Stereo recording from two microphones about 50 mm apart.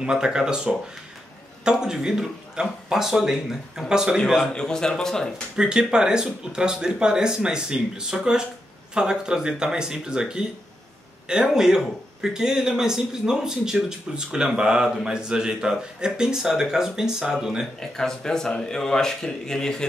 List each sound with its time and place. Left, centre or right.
0.0 s speech: centre
4.6 s speech: centre
5.6 s speech: centre
11.4 s speech: centre
17.7 s speech: centre